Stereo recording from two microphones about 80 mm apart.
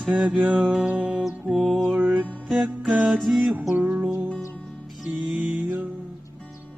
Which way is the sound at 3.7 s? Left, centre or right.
Centre.